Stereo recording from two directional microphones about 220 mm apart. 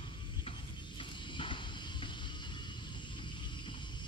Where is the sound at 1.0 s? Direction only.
20° left (ahead or behind).